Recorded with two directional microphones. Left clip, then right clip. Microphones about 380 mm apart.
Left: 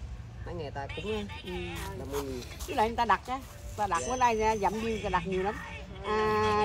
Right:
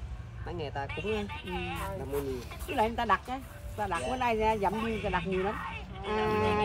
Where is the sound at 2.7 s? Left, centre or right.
Centre.